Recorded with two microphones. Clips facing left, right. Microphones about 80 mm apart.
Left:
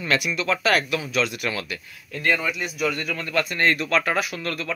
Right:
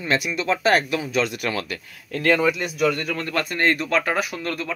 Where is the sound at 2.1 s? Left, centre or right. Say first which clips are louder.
Right 5 dB; right.